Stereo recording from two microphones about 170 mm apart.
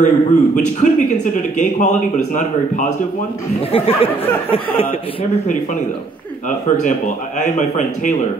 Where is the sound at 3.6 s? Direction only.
35° left (ahead or behind).